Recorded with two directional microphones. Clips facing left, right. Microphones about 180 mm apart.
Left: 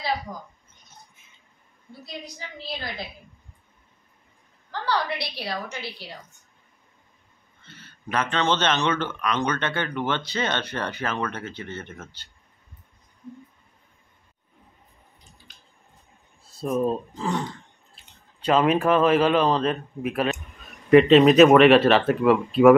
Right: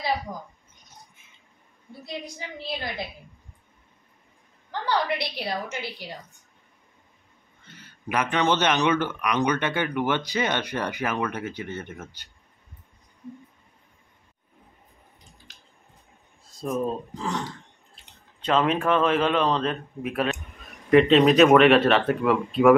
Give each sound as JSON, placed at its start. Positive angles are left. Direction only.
{"t": 4.6, "sound": "a woman's voice", "side_deg": -20}
{"t": 7.6, "sound": "speech", "side_deg": -15}
{"t": 15.5, "sound": "squish", "side_deg": -80}
{"t": 16.4, "sound": "a sound", "side_deg": 5}
{"t": 16.8, "sound": "a man's voice", "side_deg": 5}
{"t": 18.4, "sound": "a man's voice", "side_deg": 5}